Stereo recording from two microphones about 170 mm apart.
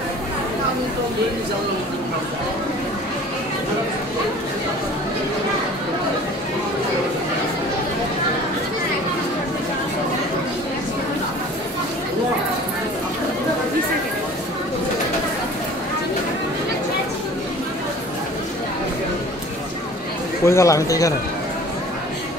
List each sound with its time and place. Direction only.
20.4 s speech: 15° left (ahead or behind)